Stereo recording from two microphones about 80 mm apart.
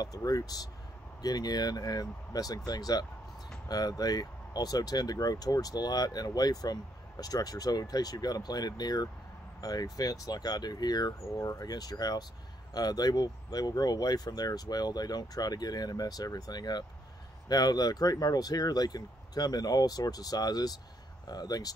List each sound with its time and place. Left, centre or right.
0.0 s speech: left